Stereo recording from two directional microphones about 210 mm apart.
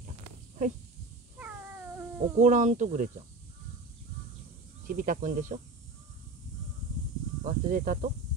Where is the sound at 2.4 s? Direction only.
35° right (ahead or behind).